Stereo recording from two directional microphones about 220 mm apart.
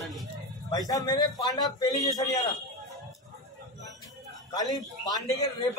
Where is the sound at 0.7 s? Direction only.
15° left (ahead or behind).